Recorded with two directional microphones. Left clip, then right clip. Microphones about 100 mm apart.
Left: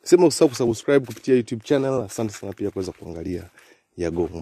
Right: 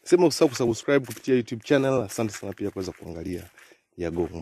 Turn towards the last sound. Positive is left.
turn(degrees=0)  # may be behind; listen again after turning